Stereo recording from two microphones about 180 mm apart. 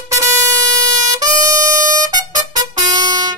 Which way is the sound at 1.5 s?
45° right (ahead or behind).